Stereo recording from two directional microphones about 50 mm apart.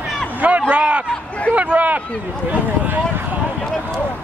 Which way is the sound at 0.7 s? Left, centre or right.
Right.